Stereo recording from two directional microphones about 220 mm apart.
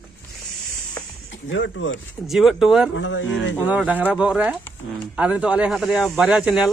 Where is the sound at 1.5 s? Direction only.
60° left (ahead or behind).